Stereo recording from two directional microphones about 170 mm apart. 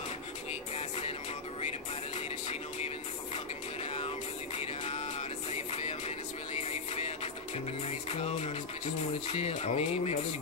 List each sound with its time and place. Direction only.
0.7 s music: 35° left (ahead or behind)
5.5 s music: 40° left (ahead or behind)
9.3 s speech: 40° left (ahead or behind)